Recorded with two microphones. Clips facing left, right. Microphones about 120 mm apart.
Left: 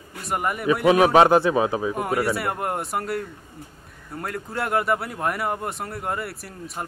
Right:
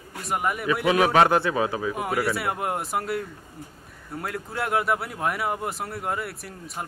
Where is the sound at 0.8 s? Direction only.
20° left (ahead or behind).